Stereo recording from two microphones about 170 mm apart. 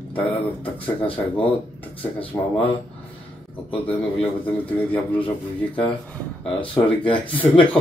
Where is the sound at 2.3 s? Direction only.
10° left (ahead or behind).